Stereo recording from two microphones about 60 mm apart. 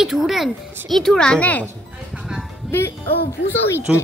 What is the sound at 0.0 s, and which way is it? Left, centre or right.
A woman's voice, centre.